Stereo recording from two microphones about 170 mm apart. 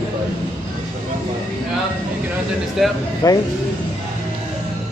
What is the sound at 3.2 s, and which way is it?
Speech, 20° left (ahead or behind).